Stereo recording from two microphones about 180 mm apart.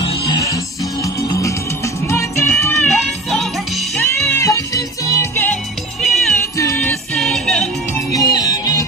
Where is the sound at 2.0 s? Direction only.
15° left (ahead or behind).